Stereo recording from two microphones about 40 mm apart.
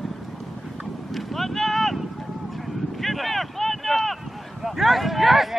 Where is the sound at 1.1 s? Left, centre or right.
Centre.